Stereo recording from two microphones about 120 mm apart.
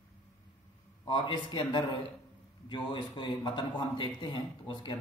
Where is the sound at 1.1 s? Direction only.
40° left (ahead or behind).